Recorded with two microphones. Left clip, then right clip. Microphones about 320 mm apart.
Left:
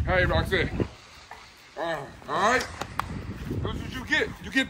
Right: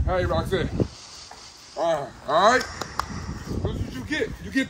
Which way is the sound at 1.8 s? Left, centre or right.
Centre.